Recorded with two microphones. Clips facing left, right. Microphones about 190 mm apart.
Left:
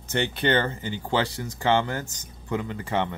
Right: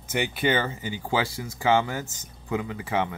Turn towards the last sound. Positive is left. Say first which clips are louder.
# even
turn(degrees=-5)  # may be behind; listen again after turning